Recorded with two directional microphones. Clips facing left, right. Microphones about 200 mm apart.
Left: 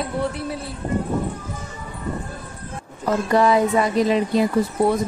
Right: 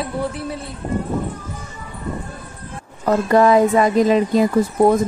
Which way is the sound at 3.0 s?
50° right (ahead or behind).